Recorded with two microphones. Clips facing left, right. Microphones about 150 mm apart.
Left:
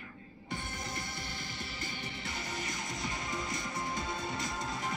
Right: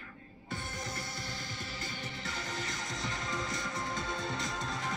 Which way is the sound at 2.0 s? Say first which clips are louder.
Even; 15° left (ahead or behind).